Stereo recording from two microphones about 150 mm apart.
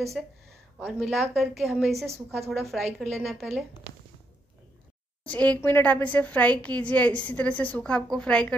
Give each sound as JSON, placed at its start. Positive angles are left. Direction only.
{"t": 0.2, "sound": "a woman's voice", "side_deg": 5}
{"t": 2.0, "sound": "a woman's voice", "side_deg": -20}
{"t": 2.5, "sound": "a woman's voice", "side_deg": 0}
{"t": 5.2, "sound": "a woman's voice", "side_deg": 10}